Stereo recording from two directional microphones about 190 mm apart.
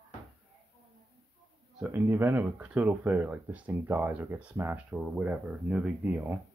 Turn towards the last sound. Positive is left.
turn(degrees=-10)  # may be behind; listen again after turning